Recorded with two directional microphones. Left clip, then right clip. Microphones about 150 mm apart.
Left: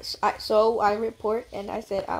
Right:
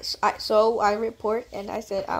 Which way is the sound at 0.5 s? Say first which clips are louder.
Right 1 dB; 15° right (ahead or behind).